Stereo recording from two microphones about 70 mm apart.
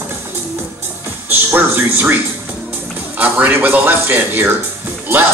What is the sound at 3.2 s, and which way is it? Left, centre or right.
Speech, right.